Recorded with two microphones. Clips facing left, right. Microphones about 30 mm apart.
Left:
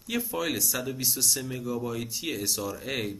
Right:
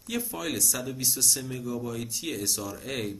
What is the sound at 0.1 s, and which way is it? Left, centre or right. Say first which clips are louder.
Speech: left 2 dB; centre.